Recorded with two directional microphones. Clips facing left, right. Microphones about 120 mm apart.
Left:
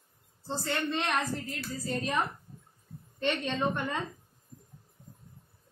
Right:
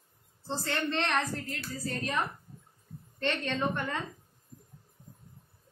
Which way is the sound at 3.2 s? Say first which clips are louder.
Left 1 dB; 15° left (ahead or behind).